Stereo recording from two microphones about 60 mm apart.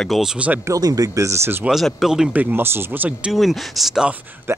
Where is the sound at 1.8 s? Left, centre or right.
Centre.